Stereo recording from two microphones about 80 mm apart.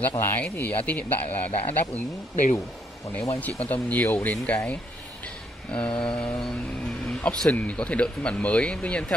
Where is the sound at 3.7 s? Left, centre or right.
Left.